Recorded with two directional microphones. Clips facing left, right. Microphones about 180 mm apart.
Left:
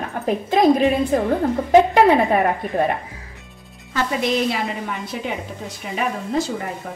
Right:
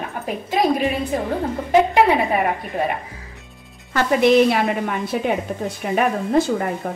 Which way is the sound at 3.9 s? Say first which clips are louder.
Right 6 dB; 60° right (ahead or behind).